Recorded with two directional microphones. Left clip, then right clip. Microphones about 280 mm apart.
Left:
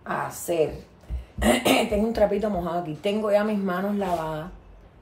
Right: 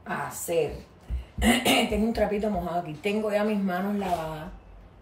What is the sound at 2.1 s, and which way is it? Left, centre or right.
A woman's voice, centre.